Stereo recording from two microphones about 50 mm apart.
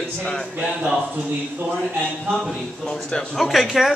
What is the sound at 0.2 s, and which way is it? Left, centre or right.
Speech, centre.